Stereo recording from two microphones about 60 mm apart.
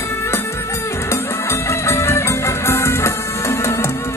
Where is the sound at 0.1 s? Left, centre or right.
Left.